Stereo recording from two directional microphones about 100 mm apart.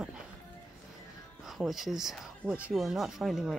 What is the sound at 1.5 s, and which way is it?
Speech, 5° right (ahead or behind).